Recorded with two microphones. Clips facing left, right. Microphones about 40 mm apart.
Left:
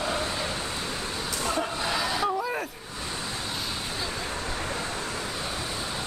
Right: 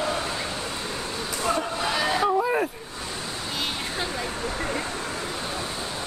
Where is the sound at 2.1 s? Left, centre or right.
Centre.